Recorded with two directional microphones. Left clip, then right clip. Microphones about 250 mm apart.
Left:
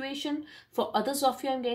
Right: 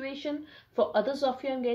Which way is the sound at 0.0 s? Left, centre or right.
Left.